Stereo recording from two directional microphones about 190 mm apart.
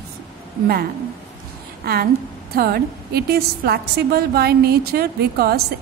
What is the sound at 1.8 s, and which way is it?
A woman's voice, 55° right (ahead or behind).